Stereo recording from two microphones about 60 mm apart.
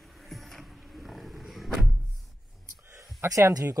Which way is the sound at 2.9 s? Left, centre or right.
Right.